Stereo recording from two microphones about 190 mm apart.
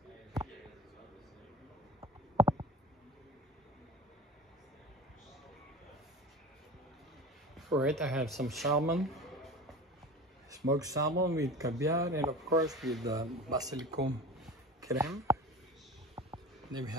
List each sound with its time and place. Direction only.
2.3 s a sound: 20° right (ahead or behind)
7.5 s speech: centre (ahead or behind)
10.7 s speech: 20° right (ahead or behind)
12.7 s speech: centre (ahead or behind)
13.0 s speech: 20° right (ahead or behind)
16.2 s a sound: 25° right (ahead or behind)